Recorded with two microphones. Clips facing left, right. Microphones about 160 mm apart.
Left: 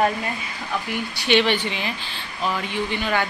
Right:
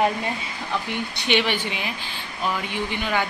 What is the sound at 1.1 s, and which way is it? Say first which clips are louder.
Speech: left 4 dB; 15° right (ahead or behind).